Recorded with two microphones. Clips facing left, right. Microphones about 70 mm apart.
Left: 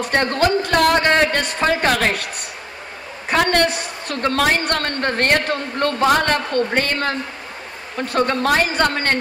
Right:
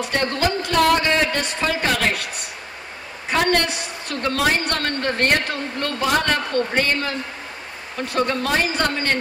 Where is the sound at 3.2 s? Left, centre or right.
Left.